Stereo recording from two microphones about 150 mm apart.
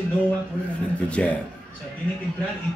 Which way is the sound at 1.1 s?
10° left (ahead or behind).